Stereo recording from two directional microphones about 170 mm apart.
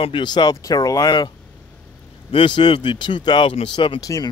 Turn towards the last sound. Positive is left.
turn(degrees=20)  # may be behind; listen again after turning